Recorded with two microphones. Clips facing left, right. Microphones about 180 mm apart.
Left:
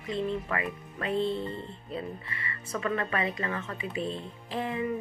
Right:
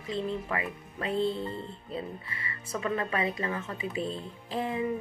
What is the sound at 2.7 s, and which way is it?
Speech, 5° right (ahead or behind).